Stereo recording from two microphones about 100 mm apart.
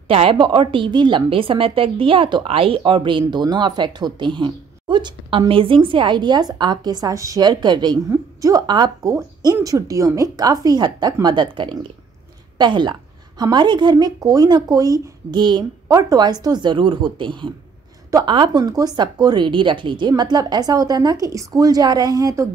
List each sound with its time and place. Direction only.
0.1 s a woman's voice: 65° right (ahead or behind)
2.4 s speech: 65° right (ahead or behind); by 8.0 s 50° right (ahead or behind)
8.1 s a woman's voice: 35° right (ahead or behind)
15.9 s speech: 35° right (ahead or behind)